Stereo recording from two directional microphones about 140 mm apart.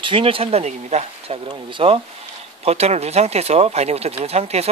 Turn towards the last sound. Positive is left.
turn(degrees=-50)  # may be behind; listen again after turning